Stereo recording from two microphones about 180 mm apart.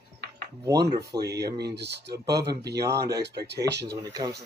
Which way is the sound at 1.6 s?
65° right (ahead or behind).